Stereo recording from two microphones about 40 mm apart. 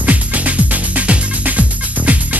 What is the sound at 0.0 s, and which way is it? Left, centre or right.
Music, right.